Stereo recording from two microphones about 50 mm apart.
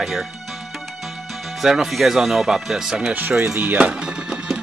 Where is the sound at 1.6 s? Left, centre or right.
Centre.